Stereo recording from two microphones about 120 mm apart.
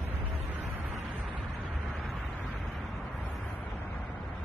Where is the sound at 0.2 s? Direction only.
15° right (ahead or behind).